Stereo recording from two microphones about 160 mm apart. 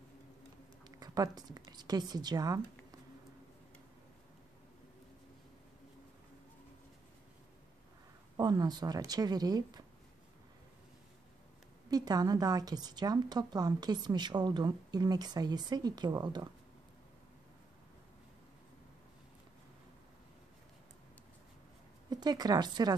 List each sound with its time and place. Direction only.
0.8 s a woman's voice: 25° right (ahead or behind)
8.4 s a woman's voice: 25° right (ahead or behind)
11.9 s a woman's voice: 25° right (ahead or behind)
22.1 s a woman's voice: 25° right (ahead or behind)